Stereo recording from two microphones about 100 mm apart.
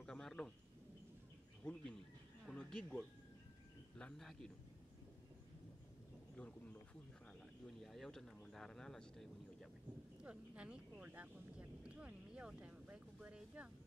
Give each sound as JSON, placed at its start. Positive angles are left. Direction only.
{"t": 0.0, "sound": "a sound", "side_deg": 5}
{"t": 1.6, "sound": "speech", "side_deg": 10}
{"t": 6.3, "sound": "insect", "side_deg": 10}
{"t": 7.8, "sound": "speech", "side_deg": 0}
{"t": 10.2, "sound": "speech", "side_deg": -10}
{"t": 11.8, "sound": "a sound", "side_deg": -15}